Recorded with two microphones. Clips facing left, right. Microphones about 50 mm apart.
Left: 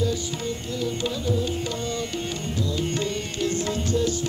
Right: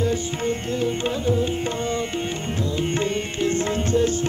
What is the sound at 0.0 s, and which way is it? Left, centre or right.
Tabla, right.